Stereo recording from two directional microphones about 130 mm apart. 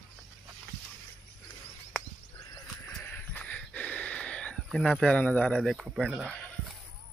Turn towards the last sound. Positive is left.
turn(degrees=5)  # may be behind; listen again after turning